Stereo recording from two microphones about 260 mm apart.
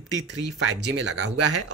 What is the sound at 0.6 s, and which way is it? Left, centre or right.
Speech, right.